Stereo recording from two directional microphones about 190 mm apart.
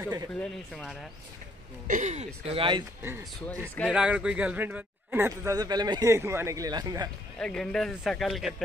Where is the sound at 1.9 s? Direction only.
40° right (ahead or behind).